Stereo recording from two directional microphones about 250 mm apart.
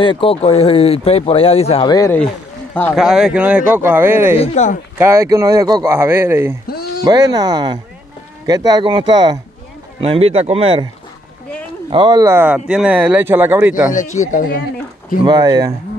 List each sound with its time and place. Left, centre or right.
0.0 s speech: left
2.9 s speech: centre
4.4 s speech: left
4.9 s speech: centre
6.7 s a sound: left
7.1 s speech: centre
11.9 s speech: centre
13.9 s speech: left
15.2 s speech: centre